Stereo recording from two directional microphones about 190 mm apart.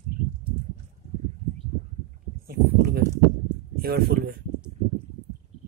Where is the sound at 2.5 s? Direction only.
55° right (ahead or behind).